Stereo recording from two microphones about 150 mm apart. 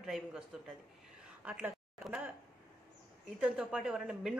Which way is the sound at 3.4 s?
5° right (ahead or behind).